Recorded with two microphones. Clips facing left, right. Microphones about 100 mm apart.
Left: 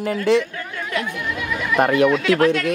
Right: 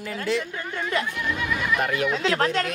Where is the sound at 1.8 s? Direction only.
65° left (ahead or behind).